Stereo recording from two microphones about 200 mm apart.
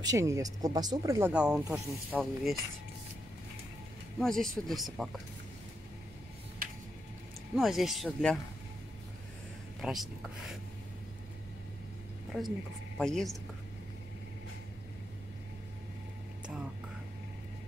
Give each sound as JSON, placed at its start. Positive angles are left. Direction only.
{"t": 0.0, "sound": "speech", "side_deg": -15}
{"t": 1.3, "sound": "speech", "side_deg": -5}
{"t": 4.2, "sound": "speech", "side_deg": 0}
{"t": 7.5, "sound": "speech", "side_deg": 0}
{"t": 9.8, "sound": "speech", "side_deg": 0}
{"t": 12.3, "sound": "speech", "side_deg": 0}